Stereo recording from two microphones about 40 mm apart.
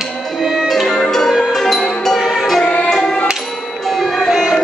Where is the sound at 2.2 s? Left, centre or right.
Centre.